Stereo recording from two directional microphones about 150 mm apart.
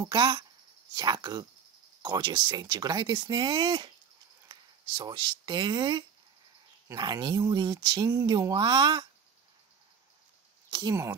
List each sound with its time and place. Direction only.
0.0 s speech: 30° right (ahead or behind)
10.7 s speech: 30° right (ahead or behind)